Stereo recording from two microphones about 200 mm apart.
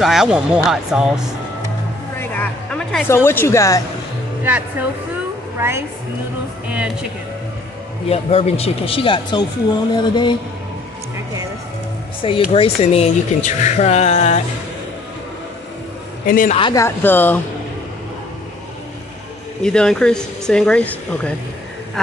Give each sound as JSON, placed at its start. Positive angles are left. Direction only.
{"t": 0.0, "sound": "speech", "side_deg": 0}
{"t": 2.1, "sound": "a sound", "side_deg": 10}
{"t": 3.1, "sound": "a woman's voice", "side_deg": 10}
{"t": 5.6, "sound": "a woman's voice", "side_deg": -10}
{"t": 8.1, "sound": "speech", "side_deg": 30}
{"t": 12.2, "sound": "speech", "side_deg": 25}
{"t": 16.3, "sound": "a man's voice", "side_deg": 40}
{"t": 16.5, "sound": "speech", "side_deg": 25}
{"t": 16.8, "sound": "a woman's voice", "side_deg": 10}
{"t": 19.6, "sound": "speech", "side_deg": 5}